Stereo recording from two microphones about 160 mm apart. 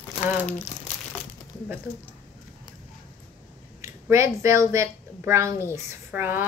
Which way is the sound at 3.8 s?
15° right (ahead or behind).